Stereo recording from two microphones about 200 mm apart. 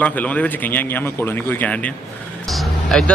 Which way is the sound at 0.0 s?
10° left (ahead or behind).